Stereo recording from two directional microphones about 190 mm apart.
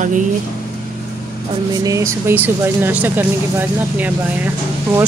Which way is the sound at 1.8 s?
15° right (ahead or behind).